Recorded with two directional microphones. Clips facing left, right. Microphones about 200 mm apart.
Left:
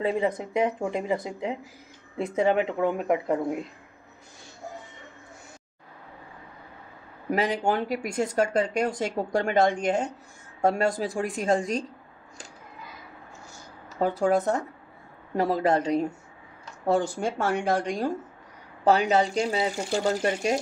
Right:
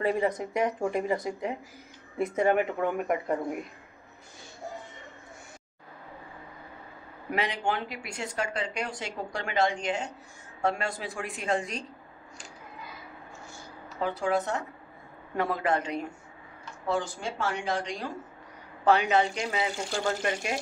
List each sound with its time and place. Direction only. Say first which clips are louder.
0.0 s speech: left 1 dB; 25° left (ahead or behind)
7.2 s a woman's voice: left 5 dB; 40° left (ahead or behind)
13.5 s a sound: right 1 dB; 45° left (ahead or behind)
15.3 s a woman's voice: left 5 dB; 35° left (ahead or behind)
16.8 s speech: left 6 dB; 50° left (ahead or behind)
18.9 s a woman's voice: left 2 dB; 40° left (ahead or behind)
19.9 s speech: left 5 dB; 15° left (ahead or behind)